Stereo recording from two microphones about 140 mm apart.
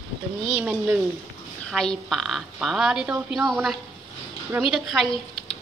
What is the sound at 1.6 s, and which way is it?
A woman's voice, 5° left (ahead or behind).